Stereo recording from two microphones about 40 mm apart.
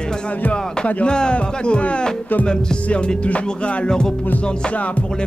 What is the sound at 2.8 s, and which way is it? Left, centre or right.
Music, left.